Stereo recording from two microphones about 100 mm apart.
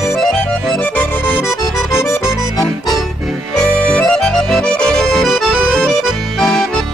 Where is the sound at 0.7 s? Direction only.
20° left (ahead or behind).